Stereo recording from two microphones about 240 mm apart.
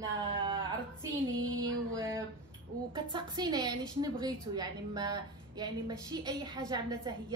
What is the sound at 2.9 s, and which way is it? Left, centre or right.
A woman's voice, centre.